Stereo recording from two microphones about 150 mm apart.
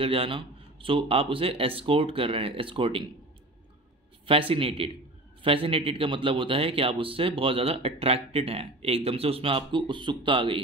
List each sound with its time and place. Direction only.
0.0 s a man's voice: 40° right (ahead or behind)
4.3 s a man's voice: 35° right (ahead or behind)